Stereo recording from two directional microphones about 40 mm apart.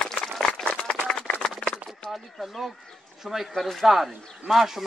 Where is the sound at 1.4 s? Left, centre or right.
Left.